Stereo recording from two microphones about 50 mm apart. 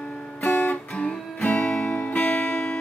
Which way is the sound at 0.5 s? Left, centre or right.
Left.